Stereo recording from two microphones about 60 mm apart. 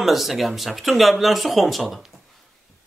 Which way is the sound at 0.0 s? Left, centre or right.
Centre.